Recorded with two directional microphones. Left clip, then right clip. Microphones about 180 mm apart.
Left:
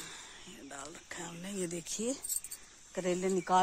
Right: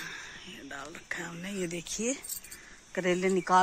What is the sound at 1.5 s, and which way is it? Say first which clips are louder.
Speech: right 3 dB; 30° left (ahead or behind).